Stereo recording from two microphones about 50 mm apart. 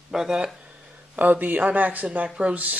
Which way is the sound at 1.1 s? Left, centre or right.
Right.